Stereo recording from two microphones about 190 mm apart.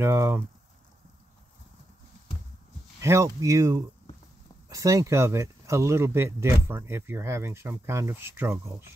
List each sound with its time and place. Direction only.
0.0 s speech: 15° right (ahead or behind)
3.0 s speech: 15° right (ahead or behind)